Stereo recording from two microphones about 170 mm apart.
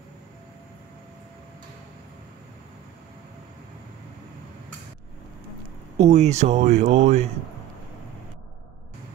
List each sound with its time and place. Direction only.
5.9 s speech: 40° right (ahead or behind)